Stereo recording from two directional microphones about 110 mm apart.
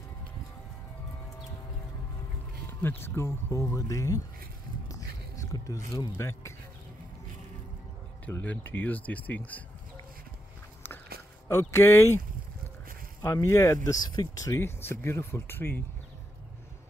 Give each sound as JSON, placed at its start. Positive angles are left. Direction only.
{"t": 2.8, "sound": "speech", "side_deg": 20}
{"t": 4.8, "sound": "biting", "side_deg": 30}
{"t": 6.1, "sound": "speech", "side_deg": 25}
{"t": 8.3, "sound": "speech", "side_deg": 20}
{"t": 11.4, "sound": "speech", "side_deg": 25}
{"t": 13.2, "sound": "speech", "side_deg": 25}